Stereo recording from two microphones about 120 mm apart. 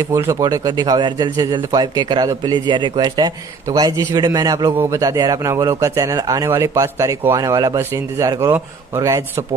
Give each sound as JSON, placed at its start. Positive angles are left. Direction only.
{"t": 0.0, "sound": "speech", "side_deg": -25}